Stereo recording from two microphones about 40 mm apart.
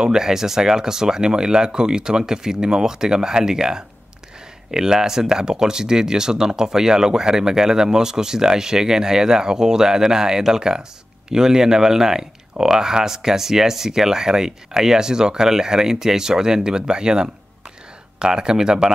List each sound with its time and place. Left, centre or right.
0.0 s speech: centre